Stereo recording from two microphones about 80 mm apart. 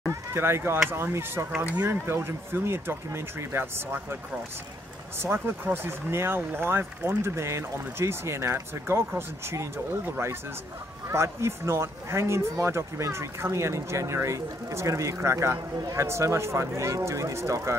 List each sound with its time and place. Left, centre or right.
0.1 s a sound: right
0.8 s speech: right
5.2 s speech: right